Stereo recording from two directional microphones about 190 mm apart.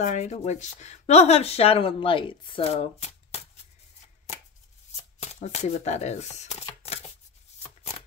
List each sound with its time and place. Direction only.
0.0 s speech: 40° left (ahead or behind)
4.9 s shuffling cards: 35° left (ahead or behind)